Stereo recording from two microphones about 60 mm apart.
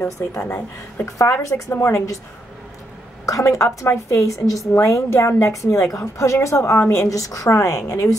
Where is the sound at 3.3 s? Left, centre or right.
Left.